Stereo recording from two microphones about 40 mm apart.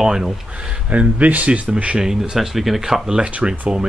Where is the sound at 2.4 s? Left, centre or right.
Centre.